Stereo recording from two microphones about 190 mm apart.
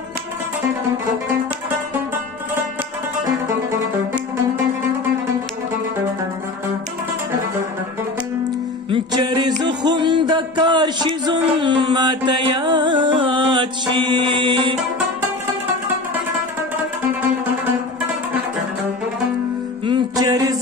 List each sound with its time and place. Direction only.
8.9 s music: 25° right (ahead or behind)
19.9 s music: 20° right (ahead or behind)